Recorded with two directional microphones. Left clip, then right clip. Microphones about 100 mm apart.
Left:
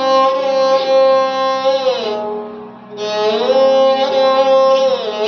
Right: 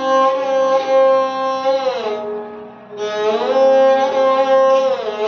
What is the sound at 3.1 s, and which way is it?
Music, 25° left (ahead or behind).